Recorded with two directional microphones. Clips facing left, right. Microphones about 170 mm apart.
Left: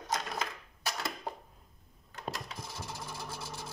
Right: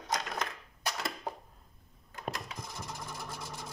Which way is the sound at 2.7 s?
5° left (ahead or behind).